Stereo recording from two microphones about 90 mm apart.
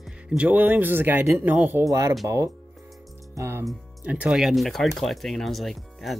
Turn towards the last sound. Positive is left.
turn(degrees=0)  # may be behind; listen again after turning